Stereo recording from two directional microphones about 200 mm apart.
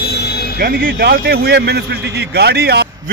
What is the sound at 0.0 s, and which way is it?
Music, 55° left (ahead or behind).